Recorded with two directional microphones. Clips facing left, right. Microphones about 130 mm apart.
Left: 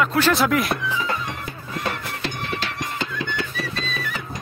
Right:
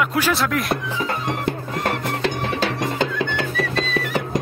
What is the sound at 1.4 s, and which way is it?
Music, 70° right (ahead or behind).